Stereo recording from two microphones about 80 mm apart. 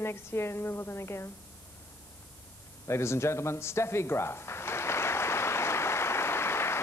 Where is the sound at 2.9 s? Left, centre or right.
Left.